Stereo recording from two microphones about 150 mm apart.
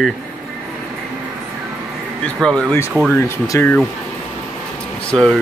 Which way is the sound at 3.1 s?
15° left (ahead or behind).